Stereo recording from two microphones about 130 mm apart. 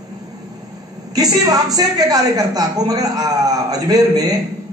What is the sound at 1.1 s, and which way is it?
A woman's voice, 30° right (ahead or behind).